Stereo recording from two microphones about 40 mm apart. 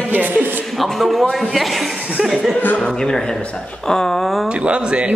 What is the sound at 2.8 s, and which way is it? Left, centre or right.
A man's voice, centre.